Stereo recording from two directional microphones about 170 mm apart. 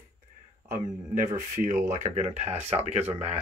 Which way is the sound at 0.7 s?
50° right (ahead or behind).